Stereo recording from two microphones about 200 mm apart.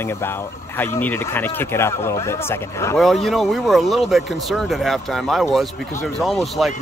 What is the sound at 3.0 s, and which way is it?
Speech, centre (ahead or behind).